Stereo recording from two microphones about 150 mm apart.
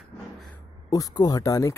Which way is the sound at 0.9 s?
25° left (ahead or behind).